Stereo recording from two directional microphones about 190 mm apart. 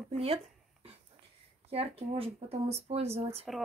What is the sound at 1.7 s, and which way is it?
Speech, 30° right (ahead or behind).